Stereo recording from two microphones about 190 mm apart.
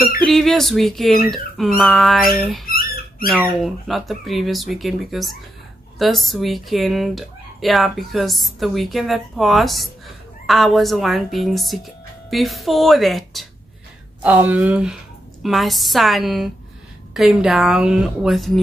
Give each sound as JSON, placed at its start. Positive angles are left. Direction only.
{"t": 0.3, "sound": "speech", "side_deg": 0}
{"t": 2.6, "sound": "a sound", "side_deg": 50}
{"t": 3.3, "sound": "speech", "side_deg": 0}